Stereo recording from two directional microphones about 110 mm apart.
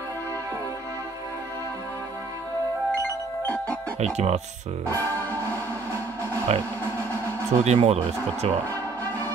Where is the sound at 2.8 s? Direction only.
15° left (ahead or behind).